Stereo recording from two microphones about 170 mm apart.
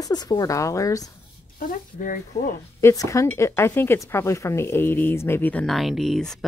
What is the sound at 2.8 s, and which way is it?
Cutlery, 15° left (ahead or behind).